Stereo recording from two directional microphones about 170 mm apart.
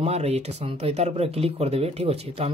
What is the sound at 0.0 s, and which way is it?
Speech, 40° right (ahead or behind).